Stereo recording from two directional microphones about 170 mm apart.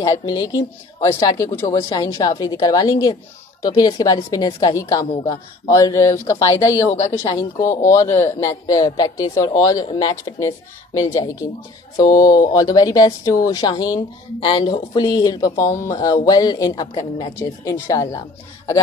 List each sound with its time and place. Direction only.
0.0 s a man's voice: 20° left (ahead or behind)